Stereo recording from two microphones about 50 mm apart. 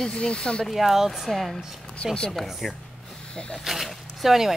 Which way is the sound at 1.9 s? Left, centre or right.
Centre.